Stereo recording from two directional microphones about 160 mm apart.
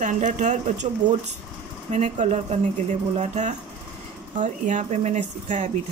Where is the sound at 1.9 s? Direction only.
45° right (ahead or behind).